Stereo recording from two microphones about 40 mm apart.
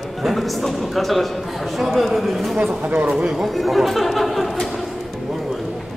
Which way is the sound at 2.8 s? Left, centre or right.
Right.